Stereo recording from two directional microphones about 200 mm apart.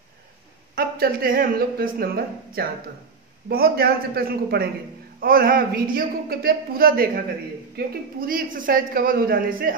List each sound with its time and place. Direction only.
0.7 s a woman's voice: 50° right (ahead or behind)